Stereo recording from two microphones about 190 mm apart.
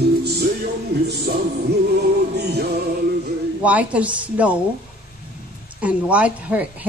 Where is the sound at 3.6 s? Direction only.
5° right (ahead or behind).